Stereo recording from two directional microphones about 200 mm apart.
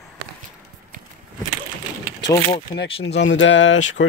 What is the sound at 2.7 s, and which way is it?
Speech, 60° left (ahead or behind).